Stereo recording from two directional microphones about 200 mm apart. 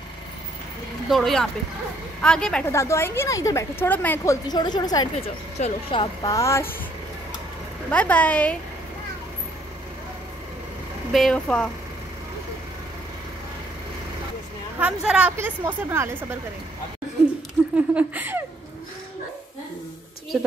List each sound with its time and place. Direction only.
1.0 s speech: centre (ahead or behind)
2.7 s a woman's voice: 15° left (ahead or behind)
4.5 s a woman's voice: 20° left (ahead or behind)
7.9 s a woman's voice: 5° left (ahead or behind)
11.1 s speech: 5° left (ahead or behind)
14.8 s a woman's voice: 5° right (ahead or behind)
17.6 s a sound: centre (ahead or behind)
17.9 s a woman's voice: 10° right (ahead or behind)
20.3 s speech: centre (ahead or behind)